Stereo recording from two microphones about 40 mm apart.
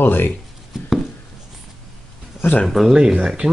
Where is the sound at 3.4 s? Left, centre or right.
Right.